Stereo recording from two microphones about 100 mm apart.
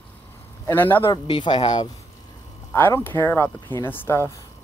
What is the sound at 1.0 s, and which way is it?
Speech, 55° left (ahead or behind).